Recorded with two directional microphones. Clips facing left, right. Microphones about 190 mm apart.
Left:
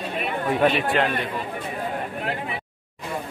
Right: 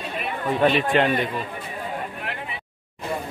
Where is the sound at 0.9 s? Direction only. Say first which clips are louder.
Right 2 dB; centre (ahead or behind).